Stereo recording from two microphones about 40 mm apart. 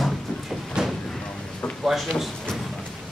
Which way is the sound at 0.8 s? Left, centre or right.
Centre.